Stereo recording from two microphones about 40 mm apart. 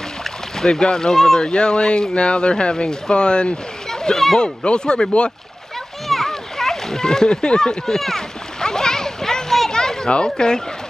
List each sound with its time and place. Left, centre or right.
0.7 s speech: centre
1.4 s speech: left
3.9 s speech: centre
4.4 s speech: left
6.0 s splash: centre; by 7.7 s left
7.8 s a sound: centre
9.7 s children playing: centre
10.1 s speech: centre